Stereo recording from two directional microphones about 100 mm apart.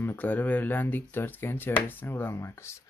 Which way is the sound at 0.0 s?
20° left (ahead or behind).